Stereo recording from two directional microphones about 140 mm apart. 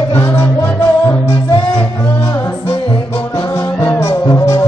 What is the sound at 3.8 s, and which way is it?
Music, 20° left (ahead or behind).